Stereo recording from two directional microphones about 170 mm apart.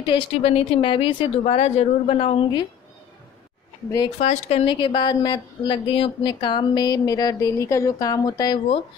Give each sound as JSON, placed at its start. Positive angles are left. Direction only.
{"t": 0.0, "sound": "speech", "side_deg": 30}
{"t": 4.2, "sound": "a woman's voice", "side_deg": 40}